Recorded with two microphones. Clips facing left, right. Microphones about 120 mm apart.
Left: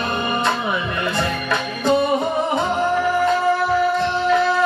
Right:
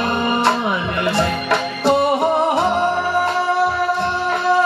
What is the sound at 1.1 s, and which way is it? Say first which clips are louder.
Music: right 4 dB; 70° right (ahead or behind).